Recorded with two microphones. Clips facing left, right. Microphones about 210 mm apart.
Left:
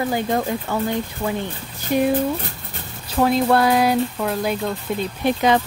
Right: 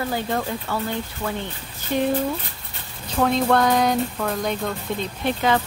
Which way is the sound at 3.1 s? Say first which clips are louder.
Left 2 dB; 5° left (ahead or behind).